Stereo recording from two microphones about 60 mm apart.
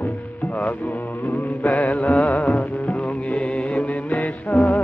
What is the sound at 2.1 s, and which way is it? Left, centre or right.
Music, left.